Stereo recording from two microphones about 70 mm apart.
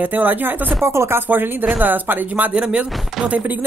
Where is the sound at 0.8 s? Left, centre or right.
Right.